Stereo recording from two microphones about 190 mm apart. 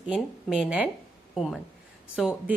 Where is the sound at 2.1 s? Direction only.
5° right (ahead or behind).